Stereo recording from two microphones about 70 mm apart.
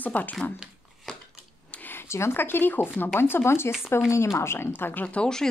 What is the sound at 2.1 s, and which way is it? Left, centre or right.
A woman's voice, left.